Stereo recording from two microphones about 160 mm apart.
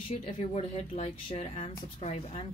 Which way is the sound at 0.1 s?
45° left (ahead or behind).